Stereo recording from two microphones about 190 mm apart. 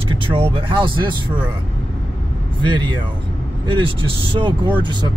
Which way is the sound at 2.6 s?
25° right (ahead or behind).